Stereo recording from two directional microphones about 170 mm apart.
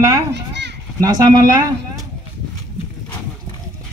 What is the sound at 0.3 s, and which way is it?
Children playing, 90° right.